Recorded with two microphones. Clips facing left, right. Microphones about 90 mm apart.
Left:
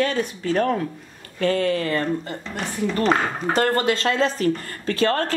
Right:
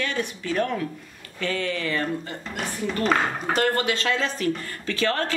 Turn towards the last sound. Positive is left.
turn(degrees=45)  # may be behind; listen again after turning